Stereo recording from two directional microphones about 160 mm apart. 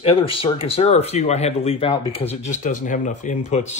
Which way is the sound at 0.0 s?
35° left (ahead or behind).